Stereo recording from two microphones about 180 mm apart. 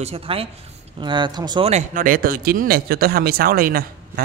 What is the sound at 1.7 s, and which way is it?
Speech, 45° right (ahead or behind).